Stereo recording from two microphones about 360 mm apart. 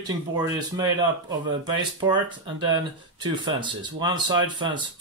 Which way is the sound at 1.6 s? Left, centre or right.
Centre.